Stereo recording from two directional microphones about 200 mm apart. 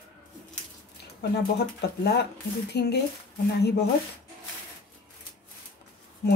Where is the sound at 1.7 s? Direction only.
55° left (ahead or behind).